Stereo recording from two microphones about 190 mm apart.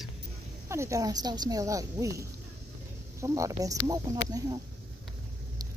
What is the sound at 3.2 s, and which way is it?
Speech, 15° right (ahead or behind).